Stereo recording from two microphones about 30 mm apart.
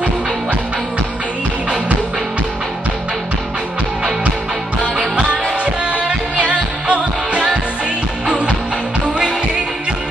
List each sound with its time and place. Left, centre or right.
5.9 s music: right